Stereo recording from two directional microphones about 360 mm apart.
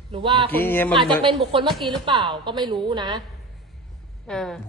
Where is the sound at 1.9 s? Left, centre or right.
Centre.